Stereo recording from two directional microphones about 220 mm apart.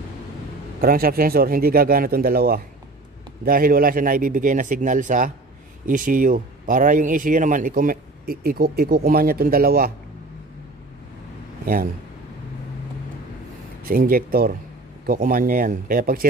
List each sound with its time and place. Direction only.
0.7 s a man's voice: 40° right (ahead or behind)
11.6 s a man's voice: 40° right (ahead or behind)
13.8 s speech: 40° right (ahead or behind)